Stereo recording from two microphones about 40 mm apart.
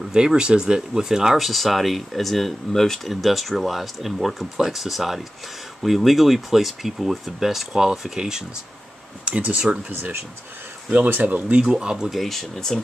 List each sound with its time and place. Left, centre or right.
0.1 s speech: centre
1.4 s speech: centre
3.1 s speech: centre
9.2 s speech: right
10.9 s speech: right
11.6 s speech: centre
12.1 s speech: centre